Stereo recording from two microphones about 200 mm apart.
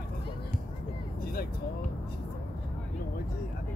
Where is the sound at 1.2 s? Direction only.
50° left (ahead or behind).